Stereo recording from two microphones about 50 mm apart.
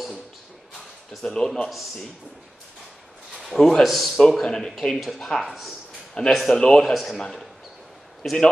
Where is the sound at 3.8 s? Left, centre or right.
Centre.